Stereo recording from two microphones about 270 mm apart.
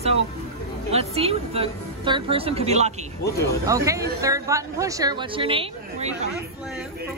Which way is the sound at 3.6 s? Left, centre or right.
Centre.